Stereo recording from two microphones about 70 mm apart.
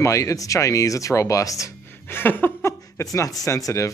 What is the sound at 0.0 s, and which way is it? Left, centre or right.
Speech, left.